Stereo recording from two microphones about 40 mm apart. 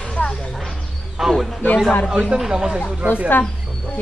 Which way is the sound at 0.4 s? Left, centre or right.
Centre.